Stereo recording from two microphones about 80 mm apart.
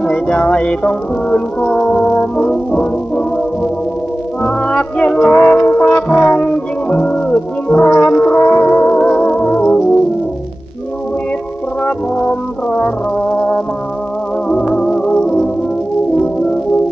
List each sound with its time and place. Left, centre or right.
0.0 s music: centre
4.4 s music: centre
8.5 s music: left
9.0 s music: centre
14.7 s music: centre